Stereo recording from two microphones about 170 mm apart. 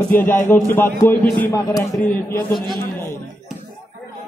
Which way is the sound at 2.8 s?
15° left (ahead or behind).